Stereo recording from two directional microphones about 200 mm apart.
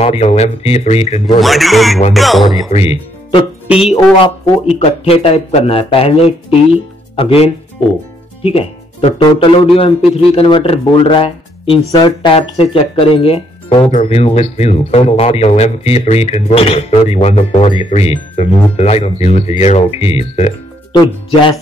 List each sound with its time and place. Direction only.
0.0 s speech: 30° left (ahead or behind)
1.4 s speech: centre (ahead or behind)
2.7 s speech: 30° left (ahead or behind)
3.6 s speech: 5° right (ahead or behind)
4.7 s speech: 30° left (ahead or behind)